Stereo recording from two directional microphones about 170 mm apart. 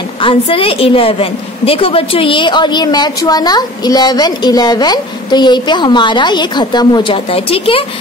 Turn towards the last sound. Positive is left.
turn(degrees=35)  # may be behind; listen again after turning